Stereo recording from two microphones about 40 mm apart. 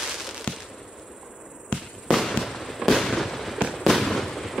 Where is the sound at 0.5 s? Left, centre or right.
Left.